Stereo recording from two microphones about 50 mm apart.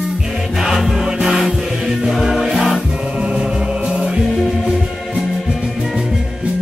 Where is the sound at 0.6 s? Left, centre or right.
Centre.